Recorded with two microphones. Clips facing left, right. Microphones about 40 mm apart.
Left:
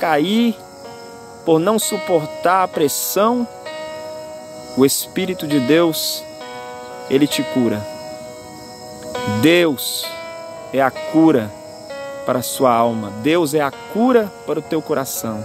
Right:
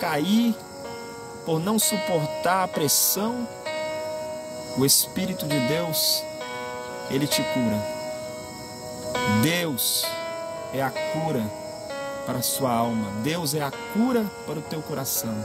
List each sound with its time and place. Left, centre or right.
0.0 s speech: left
2.0 s speech: left
3.2 s music: left
3.6 s music: centre
4.7 s speech: left
9.1 s music: centre
9.4 s speech: left
11.2 s music: left
11.9 s music: centre
12.3 s speech: left
12.8 s speech: left
13.2 s speech: left